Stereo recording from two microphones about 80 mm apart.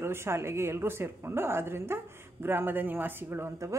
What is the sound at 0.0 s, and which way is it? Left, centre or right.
Speech, right.